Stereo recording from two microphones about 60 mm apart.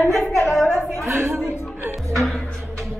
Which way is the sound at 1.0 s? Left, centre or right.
Right.